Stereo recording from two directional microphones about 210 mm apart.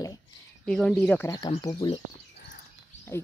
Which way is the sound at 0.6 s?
5° left (ahead or behind).